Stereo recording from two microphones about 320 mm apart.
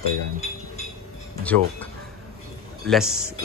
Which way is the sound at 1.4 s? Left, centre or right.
Centre.